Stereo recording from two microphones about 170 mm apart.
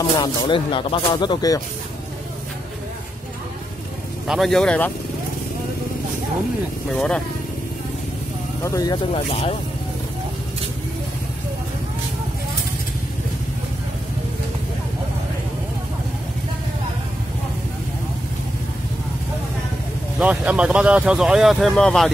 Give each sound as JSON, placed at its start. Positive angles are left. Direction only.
{"t": 0.2, "sound": "speech", "side_deg": 25}
{"t": 4.3, "sound": "speech", "side_deg": 0}
{"t": 7.0, "sound": "speech", "side_deg": 5}
{"t": 8.6, "sound": "speech", "side_deg": 20}
{"t": 9.1, "sound": "speech", "side_deg": 35}
{"t": 20.2, "sound": "speech", "side_deg": -10}